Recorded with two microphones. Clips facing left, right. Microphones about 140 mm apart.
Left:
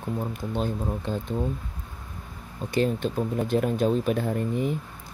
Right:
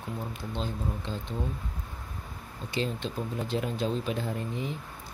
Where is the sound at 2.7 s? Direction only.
50° left (ahead or behind).